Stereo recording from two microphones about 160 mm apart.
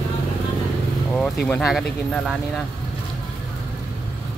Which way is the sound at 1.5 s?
5° left (ahead or behind).